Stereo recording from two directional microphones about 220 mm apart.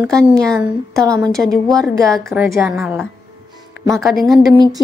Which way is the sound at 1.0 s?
15° right (ahead or behind).